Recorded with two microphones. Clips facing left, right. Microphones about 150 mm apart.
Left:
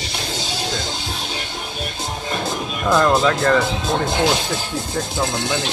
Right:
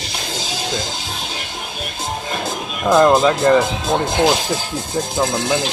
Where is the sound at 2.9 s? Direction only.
15° right (ahead or behind).